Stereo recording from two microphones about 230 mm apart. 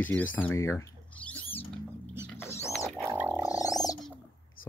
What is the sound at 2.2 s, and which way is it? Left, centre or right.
Rodents, centre.